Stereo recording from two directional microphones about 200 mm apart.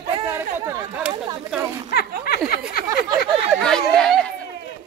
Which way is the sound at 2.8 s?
25° right (ahead or behind).